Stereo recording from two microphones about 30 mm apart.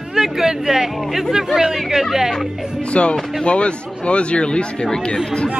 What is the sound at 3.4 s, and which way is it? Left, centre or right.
Speech, left.